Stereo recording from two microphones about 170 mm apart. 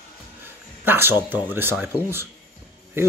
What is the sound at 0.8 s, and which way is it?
Speech, 10° right (ahead or behind).